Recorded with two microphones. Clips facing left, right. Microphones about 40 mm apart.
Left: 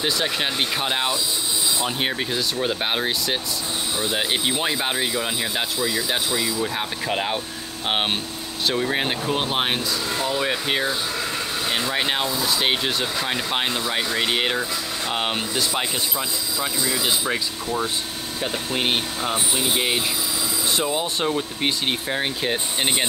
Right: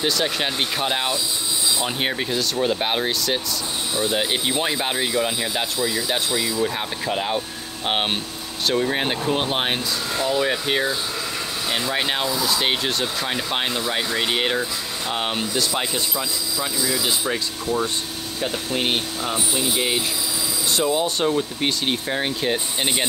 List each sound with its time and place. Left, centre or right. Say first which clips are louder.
0.0 s speech: right 1 dB; centre
7.1 s speech: right 1 dB; centre
7.3 s speech: right 2 dB; centre
16.5 s speech: even; left
18.4 s speech: right 1 dB; centre
20.7 s speech: right 4 dB; centre